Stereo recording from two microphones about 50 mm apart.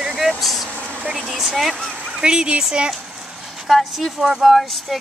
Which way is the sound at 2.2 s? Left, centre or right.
Centre.